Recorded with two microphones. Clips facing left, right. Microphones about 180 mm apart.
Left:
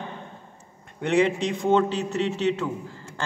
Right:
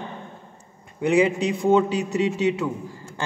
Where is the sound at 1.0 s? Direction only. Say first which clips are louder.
Right 2 dB; 10° right (ahead or behind).